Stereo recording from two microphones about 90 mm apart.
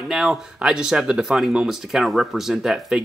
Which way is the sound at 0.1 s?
5° right (ahead or behind).